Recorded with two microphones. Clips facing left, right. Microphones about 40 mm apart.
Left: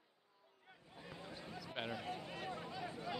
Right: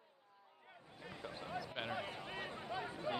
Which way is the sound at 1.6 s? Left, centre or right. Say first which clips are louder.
Right 1 dB; centre.